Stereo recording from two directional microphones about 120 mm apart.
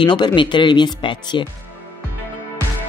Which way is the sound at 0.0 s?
40° left (ahead or behind).